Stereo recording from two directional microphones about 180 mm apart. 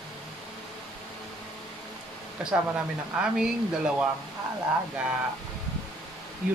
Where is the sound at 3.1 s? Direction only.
5° right (ahead or behind).